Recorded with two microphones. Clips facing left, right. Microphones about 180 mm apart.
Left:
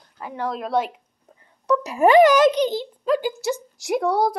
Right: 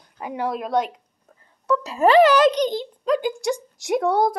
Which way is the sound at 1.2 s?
20° left (ahead or behind).